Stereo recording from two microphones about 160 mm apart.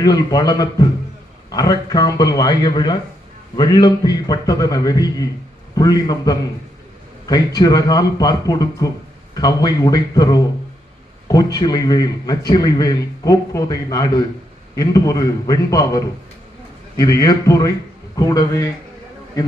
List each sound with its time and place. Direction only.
0.0 s a man's voice: 25° left (ahead or behind)